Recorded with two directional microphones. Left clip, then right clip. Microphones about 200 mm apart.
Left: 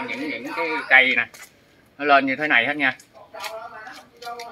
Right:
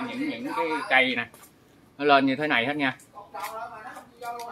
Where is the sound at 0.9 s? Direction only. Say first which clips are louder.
Left 8 dB; 25° right (ahead or behind).